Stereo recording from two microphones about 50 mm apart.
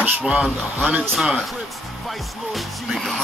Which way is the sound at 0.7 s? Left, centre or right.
Right.